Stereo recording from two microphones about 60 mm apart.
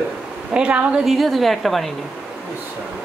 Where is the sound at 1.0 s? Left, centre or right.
Centre.